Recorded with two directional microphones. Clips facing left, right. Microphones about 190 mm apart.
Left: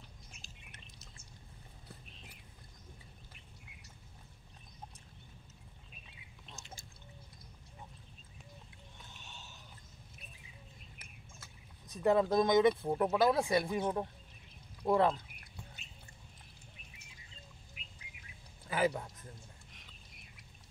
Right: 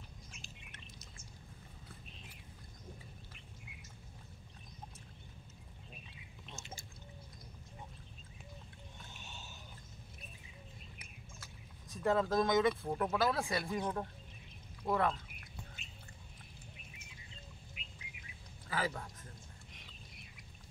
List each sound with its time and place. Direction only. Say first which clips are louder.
6.5 s drip: right 2 dB; centre (ahead or behind)
9.1 s a sound: right 1 dB; 5° right (ahead or behind)
11.9 s speech: left 4 dB; 15° left (ahead or behind)
18.7 s speech: left 6 dB; 20° left (ahead or behind)